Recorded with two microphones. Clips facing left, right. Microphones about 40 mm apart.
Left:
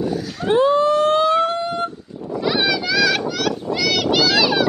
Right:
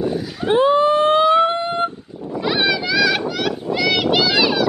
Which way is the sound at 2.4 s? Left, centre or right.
Centre.